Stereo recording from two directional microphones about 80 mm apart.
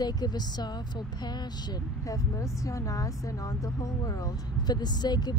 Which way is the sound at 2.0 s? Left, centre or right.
Left.